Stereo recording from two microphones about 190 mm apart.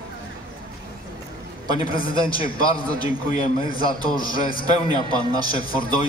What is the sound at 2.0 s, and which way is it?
Speech, 25° left (ahead or behind).